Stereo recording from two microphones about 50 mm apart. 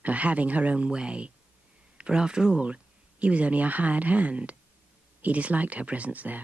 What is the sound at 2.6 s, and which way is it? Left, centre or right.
Speech, right.